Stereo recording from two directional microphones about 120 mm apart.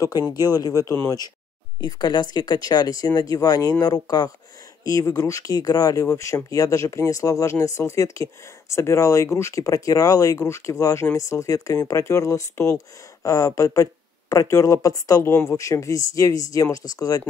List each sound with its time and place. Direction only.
0.3 s speech: 30° left (ahead or behind)